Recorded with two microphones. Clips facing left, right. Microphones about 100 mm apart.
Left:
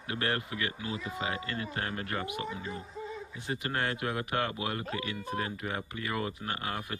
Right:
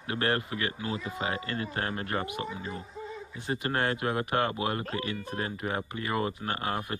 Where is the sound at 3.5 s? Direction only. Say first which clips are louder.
Right 4 dB; 40° right (ahead or behind).